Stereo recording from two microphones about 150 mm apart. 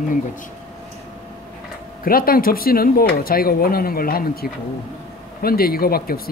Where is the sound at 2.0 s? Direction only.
75° left (ahead or behind).